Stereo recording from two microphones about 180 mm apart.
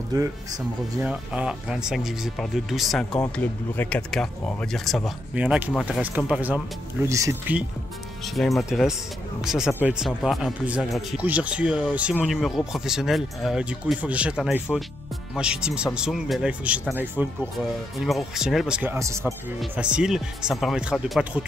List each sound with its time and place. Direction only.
1.0 s speech: 5° right (ahead or behind)
8.4 s speech: centre (ahead or behind); by 19.2 s 15° right (ahead or behind)
19.7 s speech: 5° right (ahead or behind)